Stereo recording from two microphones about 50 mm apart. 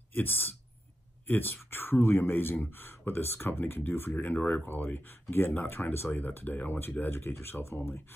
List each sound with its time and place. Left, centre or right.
0.1 s speech: left
4.4 s speech: left
4.6 s speech: left
6.0 s speech: left